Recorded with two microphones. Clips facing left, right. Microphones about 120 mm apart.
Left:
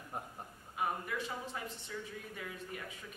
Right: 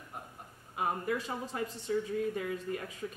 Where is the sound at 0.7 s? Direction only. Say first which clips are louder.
Right 4 dB; 35° right (ahead or behind).